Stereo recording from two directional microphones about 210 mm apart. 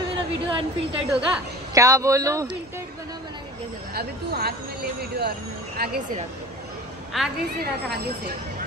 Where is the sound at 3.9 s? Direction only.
50° right (ahead or behind).